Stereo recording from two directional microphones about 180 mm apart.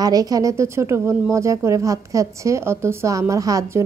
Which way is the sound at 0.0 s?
20° right (ahead or behind).